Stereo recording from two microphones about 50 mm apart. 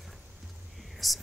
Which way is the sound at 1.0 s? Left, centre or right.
Centre.